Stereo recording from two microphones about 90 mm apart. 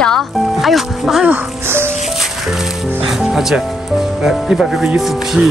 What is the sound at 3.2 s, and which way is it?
Music, 5° right (ahead or behind).